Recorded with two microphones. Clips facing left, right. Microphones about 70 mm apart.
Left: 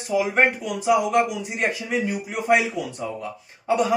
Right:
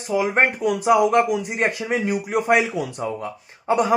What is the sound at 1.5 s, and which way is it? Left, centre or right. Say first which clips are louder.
A man's voice: right 2 dB; right.